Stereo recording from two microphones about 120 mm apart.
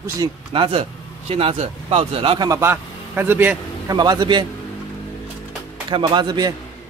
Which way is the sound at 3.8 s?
35° right (ahead or behind).